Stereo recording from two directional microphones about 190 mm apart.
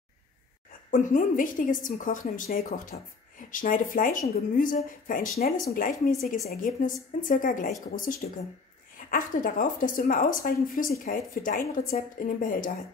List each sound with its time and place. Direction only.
0.9 s a woman's voice: 45° left (ahead or behind)